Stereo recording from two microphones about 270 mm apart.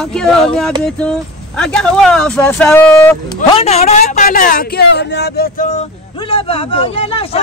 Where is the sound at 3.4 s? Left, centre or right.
Left.